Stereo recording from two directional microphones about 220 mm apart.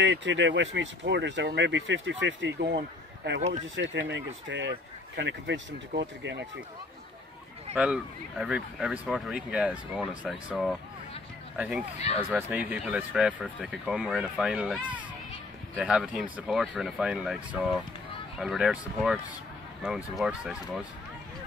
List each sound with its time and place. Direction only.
0.0 s speech: 55° right (ahead or behind)
7.7 s speech: 5° right (ahead or behind)